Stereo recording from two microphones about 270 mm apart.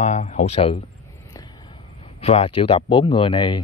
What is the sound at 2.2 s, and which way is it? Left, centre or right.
Speech, left.